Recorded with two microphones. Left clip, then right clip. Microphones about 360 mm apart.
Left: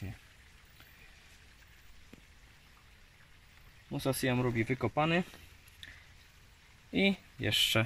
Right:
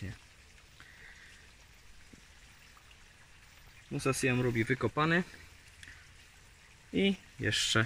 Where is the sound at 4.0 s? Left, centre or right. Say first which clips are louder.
Right 1 dB; centre.